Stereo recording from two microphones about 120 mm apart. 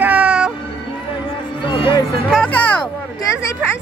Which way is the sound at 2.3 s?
10° left (ahead or behind).